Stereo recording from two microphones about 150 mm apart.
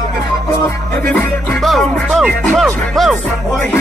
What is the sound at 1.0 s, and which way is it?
Music, 10° left (ahead or behind).